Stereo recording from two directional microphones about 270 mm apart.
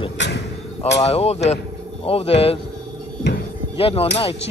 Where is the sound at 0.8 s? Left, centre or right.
Left.